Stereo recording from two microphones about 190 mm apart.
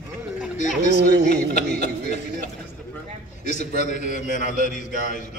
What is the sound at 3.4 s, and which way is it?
A man's voice, 40° left (ahead or behind).